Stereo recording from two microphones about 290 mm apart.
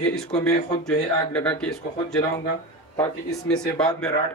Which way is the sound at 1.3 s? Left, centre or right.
Centre.